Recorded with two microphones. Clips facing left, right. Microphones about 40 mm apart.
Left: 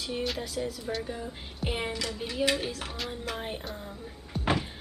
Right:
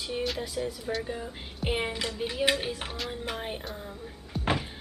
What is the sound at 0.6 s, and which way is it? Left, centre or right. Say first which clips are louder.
Speech: right 1 dB; centre.